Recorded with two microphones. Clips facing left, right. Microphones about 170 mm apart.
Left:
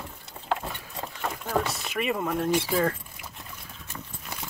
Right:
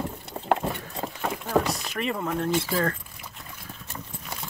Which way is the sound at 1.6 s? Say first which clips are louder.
Right 1 dB; centre (ahead or behind).